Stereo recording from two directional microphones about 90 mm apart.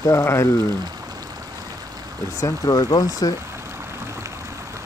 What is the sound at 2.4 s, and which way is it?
Speech, 40° left (ahead or behind).